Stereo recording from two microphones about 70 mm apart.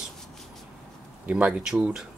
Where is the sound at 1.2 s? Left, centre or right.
Centre.